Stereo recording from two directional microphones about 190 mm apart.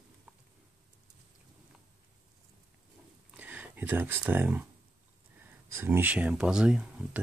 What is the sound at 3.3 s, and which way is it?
Speech, 10° right (ahead or behind).